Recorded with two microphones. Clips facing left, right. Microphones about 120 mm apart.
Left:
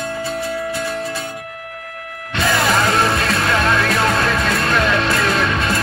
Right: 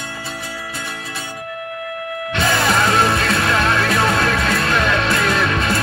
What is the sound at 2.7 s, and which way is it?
Music, centre (ahead or behind).